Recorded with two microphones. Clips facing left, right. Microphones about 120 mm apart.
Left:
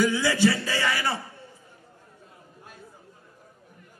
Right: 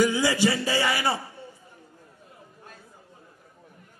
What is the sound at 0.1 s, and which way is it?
A man's voice, 15° right (ahead or behind).